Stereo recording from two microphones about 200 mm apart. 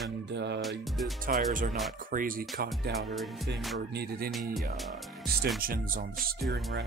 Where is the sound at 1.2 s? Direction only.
45° right (ahead or behind).